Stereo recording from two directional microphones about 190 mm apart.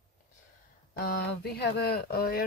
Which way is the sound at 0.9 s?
50° left (ahead or behind).